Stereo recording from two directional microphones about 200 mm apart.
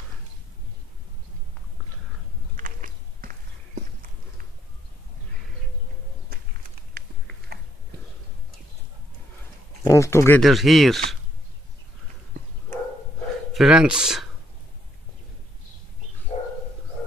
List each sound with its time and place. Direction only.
2.5 s walk: 45° right (ahead or behind)
7.5 s a sound: 50° right (ahead or behind)
9.8 s speech: 15° left (ahead or behind)
10.4 s speech: centre (ahead or behind)
13.5 s speech: 5° right (ahead or behind)